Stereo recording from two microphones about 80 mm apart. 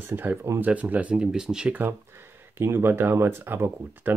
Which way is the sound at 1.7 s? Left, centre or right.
Right.